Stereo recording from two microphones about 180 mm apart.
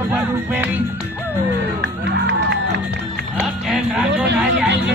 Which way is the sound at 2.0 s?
80° right.